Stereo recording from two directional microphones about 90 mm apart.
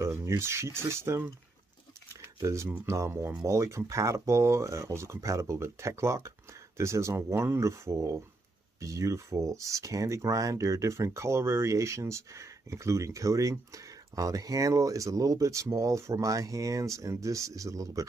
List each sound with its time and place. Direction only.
0.0 s speech: 30° right (ahead or behind)
2.4 s speech: 30° right (ahead or behind)